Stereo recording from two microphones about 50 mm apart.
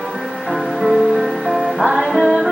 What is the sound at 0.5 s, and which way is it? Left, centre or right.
Music, centre.